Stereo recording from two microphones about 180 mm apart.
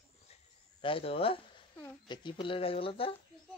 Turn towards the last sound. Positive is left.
turn(degrees=30)  # may be behind; listen again after turning